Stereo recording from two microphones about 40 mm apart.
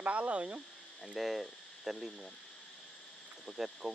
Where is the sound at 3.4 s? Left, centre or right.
Centre.